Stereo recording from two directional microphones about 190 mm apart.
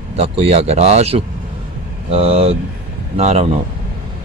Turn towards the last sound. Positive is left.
turn(degrees=-35)  # may be behind; listen again after turning